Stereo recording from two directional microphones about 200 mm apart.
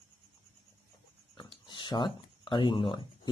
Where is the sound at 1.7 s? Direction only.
25° left (ahead or behind).